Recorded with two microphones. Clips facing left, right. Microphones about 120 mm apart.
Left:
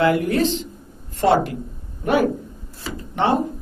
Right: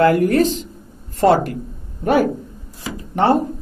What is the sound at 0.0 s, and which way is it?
Speech, 45° right (ahead or behind).